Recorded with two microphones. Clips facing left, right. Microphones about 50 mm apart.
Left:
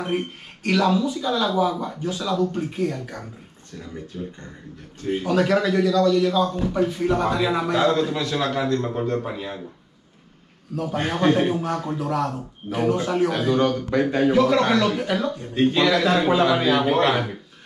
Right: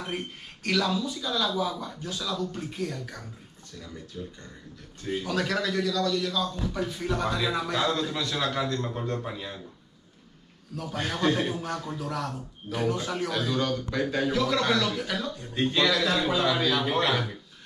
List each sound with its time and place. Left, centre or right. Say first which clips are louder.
0.0 s speech: left 8 dB; left
0.7 s a man's voice: left 7 dB; left
10.8 s a man's voice: left 6 dB; left